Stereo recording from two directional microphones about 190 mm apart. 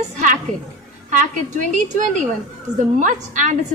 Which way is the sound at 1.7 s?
40° right (ahead or behind).